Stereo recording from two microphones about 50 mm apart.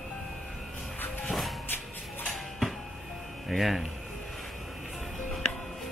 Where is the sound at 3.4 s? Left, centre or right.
Centre.